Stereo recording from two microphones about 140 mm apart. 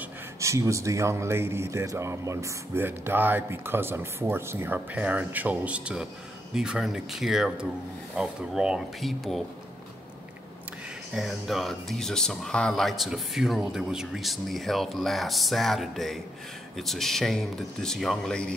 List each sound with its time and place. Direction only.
0.0 s speech: 20° right (ahead or behind); by 9.4 s centre (ahead or behind)
11.1 s speech: centre (ahead or behind)